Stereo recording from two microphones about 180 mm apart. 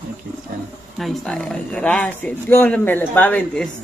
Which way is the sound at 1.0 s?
5° left (ahead or behind).